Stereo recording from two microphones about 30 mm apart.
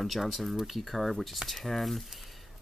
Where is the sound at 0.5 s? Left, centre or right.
Centre.